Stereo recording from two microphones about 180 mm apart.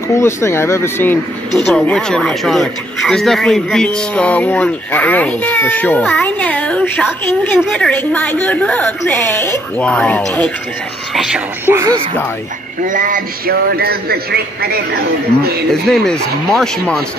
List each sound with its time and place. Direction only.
0.1 s speech: 15° left (ahead or behind)
11.1 s speech: 5° right (ahead or behind)
12.8 s a man's voice: 45° right (ahead or behind); by 15.0 s 60° right (ahead or behind)
15.9 s speech: centre (ahead or behind)